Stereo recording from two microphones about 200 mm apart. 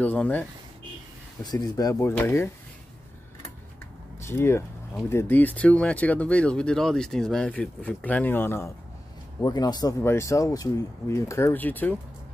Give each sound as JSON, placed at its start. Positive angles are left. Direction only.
{"t": 0.0, "sound": "speech", "side_deg": 10}
{"t": 1.4, "sound": "speech", "side_deg": 20}
{"t": 4.3, "sound": "speech", "side_deg": 15}